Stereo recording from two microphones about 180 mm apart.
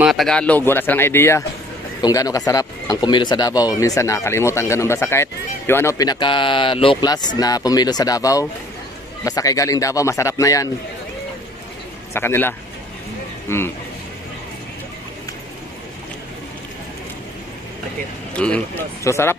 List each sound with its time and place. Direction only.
0.0 s a man's voice: centre (ahead or behind); by 10.7 s 20° left (ahead or behind)
12.1 s a man's voice: 15° left (ahead or behind)
18.3 s a man's voice: 5° left (ahead or behind)